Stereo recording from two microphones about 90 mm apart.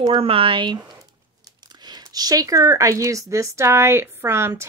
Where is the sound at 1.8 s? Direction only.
50° right (ahead or behind).